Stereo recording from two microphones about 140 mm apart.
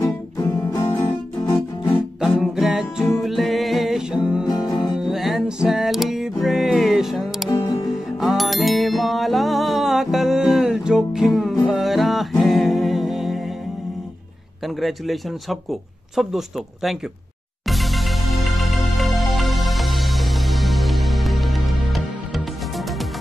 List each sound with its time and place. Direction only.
0.0 s music: 20° left (ahead or behind)
2.1 s music: centre (ahead or behind)
4.5 s music: 30° left (ahead or behind)
4.9 s music: 5° right (ahead or behind)
7.4 s music: 30° left (ahead or behind)
8.2 s music: centre (ahead or behind)
14.8 s speech: centre (ahead or behind)
17.6 s music: centre (ahead or behind)